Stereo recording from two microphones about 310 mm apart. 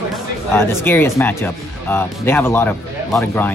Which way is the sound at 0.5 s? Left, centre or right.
Centre.